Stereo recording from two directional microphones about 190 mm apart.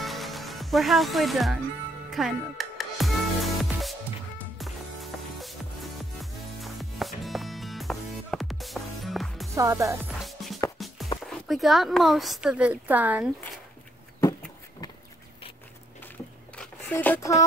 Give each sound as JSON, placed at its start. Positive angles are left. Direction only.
{"t": 0.0, "sound": "music", "side_deg": 0}
{"t": 9.6, "sound": "music", "side_deg": -15}
{"t": 10.2, "sound": "music", "side_deg": 0}
{"t": 11.2, "sound": "speech", "side_deg": 0}
{"t": 14.2, "sound": "a sound", "side_deg": 20}
{"t": 16.5, "sound": "a sound", "side_deg": 10}